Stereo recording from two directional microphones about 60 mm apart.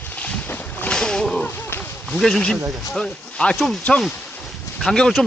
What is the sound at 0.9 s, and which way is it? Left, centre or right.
Splash, centre.